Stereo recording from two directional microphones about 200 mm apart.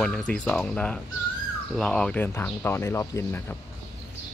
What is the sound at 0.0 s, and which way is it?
Speech, 5° left (ahead or behind).